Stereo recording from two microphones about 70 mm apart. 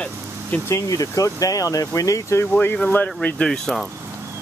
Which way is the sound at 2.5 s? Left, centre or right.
Left.